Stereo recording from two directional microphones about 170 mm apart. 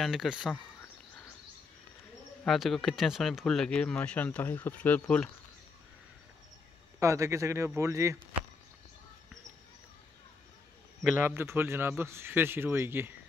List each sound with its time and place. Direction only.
0.0 s speech: centre (ahead or behind)
2.4 s speech: centre (ahead or behind)
7.0 s a man's voice: 15° right (ahead or behind)
11.1 s a man's voice: 10° right (ahead or behind)